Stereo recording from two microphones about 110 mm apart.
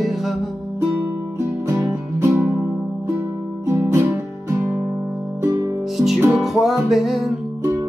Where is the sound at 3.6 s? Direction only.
25° right (ahead or behind).